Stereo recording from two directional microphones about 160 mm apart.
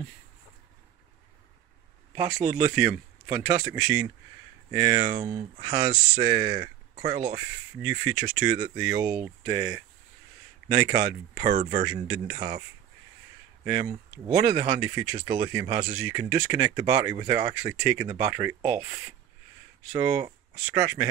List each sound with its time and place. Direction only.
2.2 s speech: 10° right (ahead or behind)
7.8 s speech: 15° right (ahead or behind)
10.9 s speech: 20° right (ahead or behind)
11.4 s speech: 55° right (ahead or behind)
11.9 s speech: 25° right (ahead or behind)
13.7 s speech: 15° right (ahead or behind)